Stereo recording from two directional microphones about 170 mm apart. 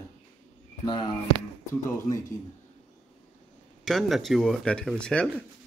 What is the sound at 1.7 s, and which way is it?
Speech, 20° left (ahead or behind).